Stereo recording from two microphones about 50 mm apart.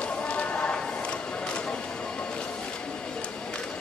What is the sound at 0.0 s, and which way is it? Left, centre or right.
Music, left.